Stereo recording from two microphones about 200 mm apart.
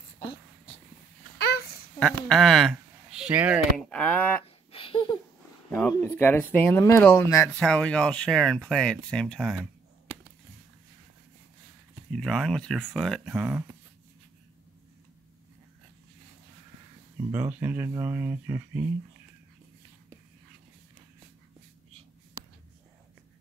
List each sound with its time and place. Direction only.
2.0 s speech: 5° left (ahead or behind)
3.7 s a sound: 5° left (ahead or behind)
4.7 s a sound: 25° left (ahead or behind)
5.7 s speech: 5° left (ahead or behind)
12.1 s speech: centre (ahead or behind)
17.3 s speech: 10° right (ahead or behind)